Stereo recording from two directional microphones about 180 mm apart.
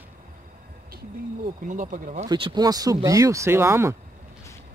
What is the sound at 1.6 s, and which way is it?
Speech, 45° right (ahead or behind).